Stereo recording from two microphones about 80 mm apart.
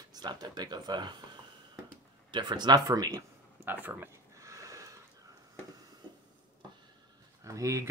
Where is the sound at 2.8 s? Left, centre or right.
Right.